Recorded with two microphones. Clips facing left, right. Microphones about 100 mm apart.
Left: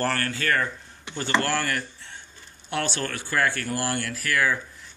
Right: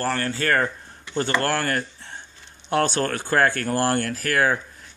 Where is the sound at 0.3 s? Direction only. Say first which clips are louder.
Right 4 dB; 40° right (ahead or behind).